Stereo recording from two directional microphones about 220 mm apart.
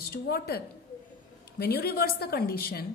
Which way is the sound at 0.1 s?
45° left (ahead or behind).